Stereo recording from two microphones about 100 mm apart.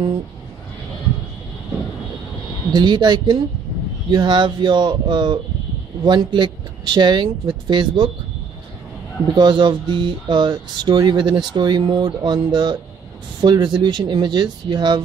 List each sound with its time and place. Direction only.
2.7 s speech: 45° right (ahead or behind)
9.3 s speech: 50° right (ahead or behind)